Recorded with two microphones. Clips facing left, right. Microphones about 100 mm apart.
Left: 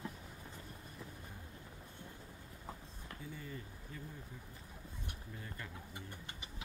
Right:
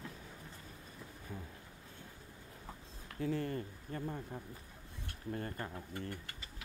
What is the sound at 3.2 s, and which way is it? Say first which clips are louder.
Speech: right 13 dB; 80° right.